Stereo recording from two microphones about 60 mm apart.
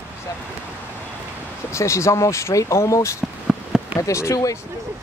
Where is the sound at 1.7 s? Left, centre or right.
Left.